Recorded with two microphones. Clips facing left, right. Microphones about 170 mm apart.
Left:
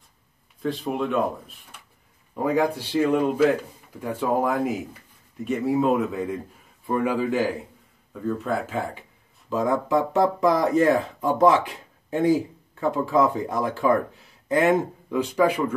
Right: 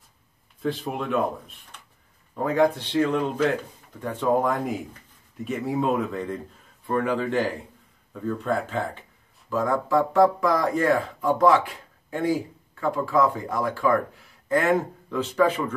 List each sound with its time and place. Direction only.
0.6 s speech: centre (ahead or behind)
2.3 s speech: 10° left (ahead or behind)
9.5 s speech: 20° left (ahead or behind)